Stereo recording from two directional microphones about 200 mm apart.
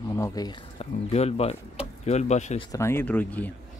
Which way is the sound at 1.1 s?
30° left (ahead or behind).